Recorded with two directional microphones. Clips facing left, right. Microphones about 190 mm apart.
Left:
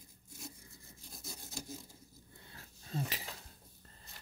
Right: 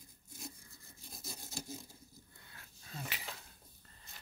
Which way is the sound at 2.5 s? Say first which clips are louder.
Left 9 dB; 35° left (ahead or behind).